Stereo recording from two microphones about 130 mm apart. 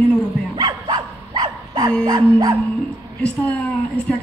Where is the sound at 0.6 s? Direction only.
35° right (ahead or behind).